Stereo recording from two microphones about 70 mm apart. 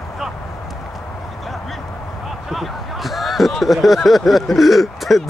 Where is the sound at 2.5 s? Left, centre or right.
Centre.